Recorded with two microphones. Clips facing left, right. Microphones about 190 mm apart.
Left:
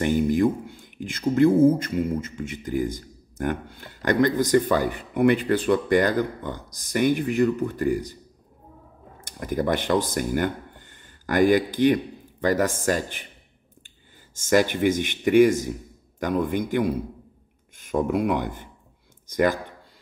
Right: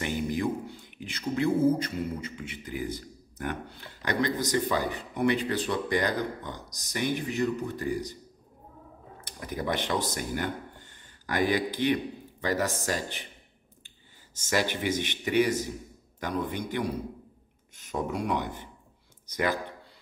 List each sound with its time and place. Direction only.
0.0 s speech: 45° left (ahead or behind)
9.4 s speech: 50° left (ahead or behind)
14.3 s speech: 50° left (ahead or behind)